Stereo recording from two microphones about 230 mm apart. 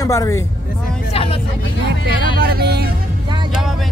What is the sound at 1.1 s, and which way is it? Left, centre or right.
Vehicle, left.